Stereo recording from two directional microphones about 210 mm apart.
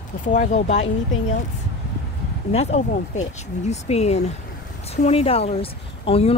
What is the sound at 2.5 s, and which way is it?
Speech, 30° left (ahead or behind).